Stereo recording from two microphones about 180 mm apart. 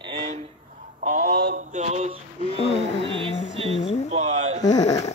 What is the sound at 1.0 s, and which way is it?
Mantra, 45° right (ahead or behind).